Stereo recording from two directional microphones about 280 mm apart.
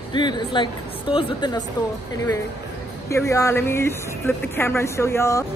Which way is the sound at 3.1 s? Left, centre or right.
Centre.